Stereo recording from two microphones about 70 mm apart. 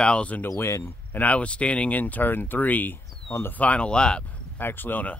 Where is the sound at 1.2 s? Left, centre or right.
Centre.